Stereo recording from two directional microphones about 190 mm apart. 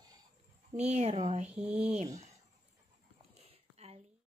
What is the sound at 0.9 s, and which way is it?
Speech, 35° right (ahead or behind).